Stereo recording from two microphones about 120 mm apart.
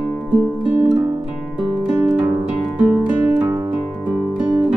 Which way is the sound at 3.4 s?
25° right (ahead or behind).